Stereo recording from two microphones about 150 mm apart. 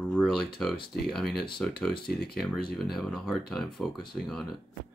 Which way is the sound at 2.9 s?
Centre (ahead or behind).